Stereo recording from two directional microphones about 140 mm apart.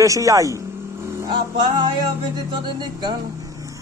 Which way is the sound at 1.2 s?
30° right (ahead or behind).